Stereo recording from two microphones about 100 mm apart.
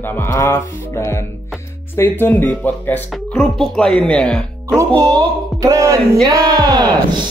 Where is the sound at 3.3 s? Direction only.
5° left (ahead or behind).